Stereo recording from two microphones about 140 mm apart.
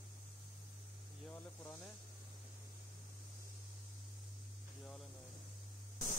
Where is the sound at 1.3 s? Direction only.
20° left (ahead or behind).